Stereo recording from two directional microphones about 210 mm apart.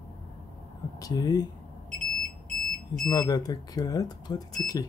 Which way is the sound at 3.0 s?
20° left (ahead or behind).